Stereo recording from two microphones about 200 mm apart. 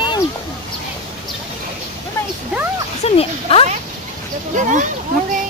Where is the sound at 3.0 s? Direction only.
30° left (ahead or behind).